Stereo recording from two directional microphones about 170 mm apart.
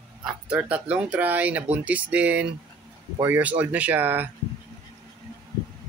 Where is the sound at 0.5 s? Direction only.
5° right (ahead or behind).